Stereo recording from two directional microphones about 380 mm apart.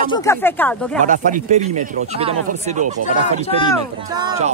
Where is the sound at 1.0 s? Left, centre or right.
Centre.